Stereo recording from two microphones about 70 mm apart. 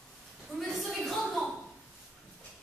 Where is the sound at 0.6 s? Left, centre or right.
Centre.